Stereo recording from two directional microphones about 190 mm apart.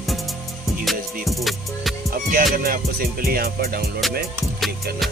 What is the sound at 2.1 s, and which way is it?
Music, 50° right (ahead or behind).